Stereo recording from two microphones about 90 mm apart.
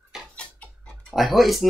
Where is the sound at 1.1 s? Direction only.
Centre (ahead or behind).